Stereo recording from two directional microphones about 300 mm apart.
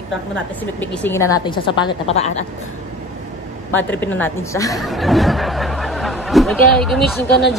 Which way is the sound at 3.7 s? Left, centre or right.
Centre.